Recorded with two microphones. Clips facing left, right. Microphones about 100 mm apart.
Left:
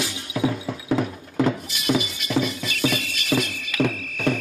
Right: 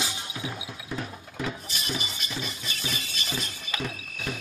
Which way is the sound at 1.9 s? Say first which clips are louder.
Left 12 dB; 90° left.